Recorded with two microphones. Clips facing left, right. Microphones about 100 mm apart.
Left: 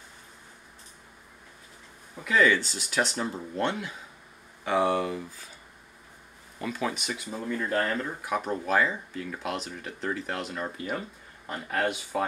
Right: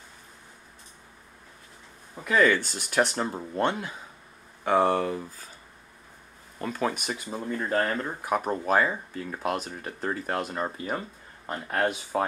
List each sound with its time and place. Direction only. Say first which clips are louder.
2.2 s speech: right 1 dB; 45° right (ahead or behind)
6.6 s speech: right 2 dB; 45° right (ahead or behind)